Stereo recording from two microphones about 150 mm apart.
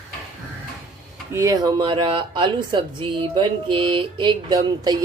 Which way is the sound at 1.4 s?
25° right (ahead or behind).